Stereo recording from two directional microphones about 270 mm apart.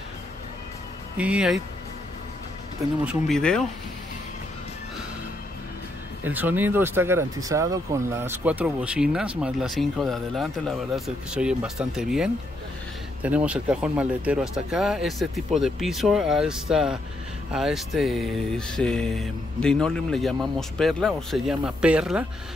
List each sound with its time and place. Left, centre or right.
1.1 s speech: centre
3.1 s speech: centre
6.2 s speech: centre